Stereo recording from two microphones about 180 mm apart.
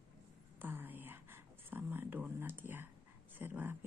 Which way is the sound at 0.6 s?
10° right (ahead or behind).